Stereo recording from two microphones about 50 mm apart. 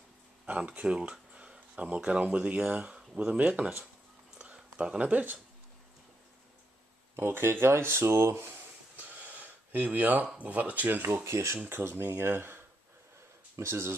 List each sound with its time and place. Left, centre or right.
0.5 s speech: right
4.4 s a sound: right
7.2 s speech: right
8.9 s speech: right
11.2 s speech: right
11.7 s speech: right
13.6 s speech: right